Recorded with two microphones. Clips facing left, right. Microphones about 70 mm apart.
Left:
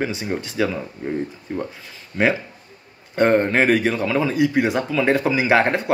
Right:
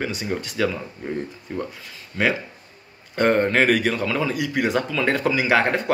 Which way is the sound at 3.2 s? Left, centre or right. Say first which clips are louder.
Left 2 dB; left.